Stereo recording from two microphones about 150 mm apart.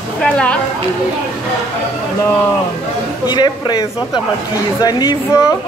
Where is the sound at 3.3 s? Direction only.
30° left (ahead or behind).